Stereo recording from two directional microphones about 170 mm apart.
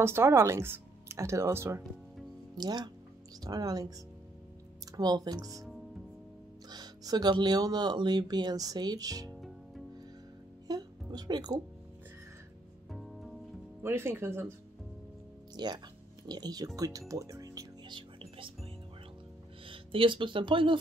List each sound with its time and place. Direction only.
0.0 s speech: 15° right (ahead or behind)
4.9 s speech: 25° right (ahead or behind)
6.7 s speech: 25° right (ahead or behind)
10.7 s music: 25° right (ahead or behind)
12.9 s music: centre (ahead or behind)
13.8 s speech: 15° right (ahead or behind)
15.5 s speech: 25° right (ahead or behind)
17.1 s music: 20° right (ahead or behind)
19.6 s speech: 30° right (ahead or behind)